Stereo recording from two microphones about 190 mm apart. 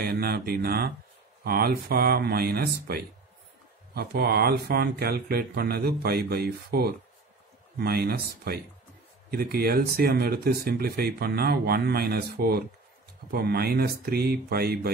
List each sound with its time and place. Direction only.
0.0 s speech: 55° right (ahead or behind)